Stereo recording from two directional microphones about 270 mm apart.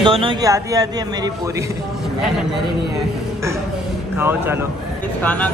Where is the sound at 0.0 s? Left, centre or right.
Centre.